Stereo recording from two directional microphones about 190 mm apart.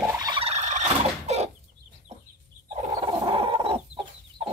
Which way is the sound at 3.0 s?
30° right (ahead or behind).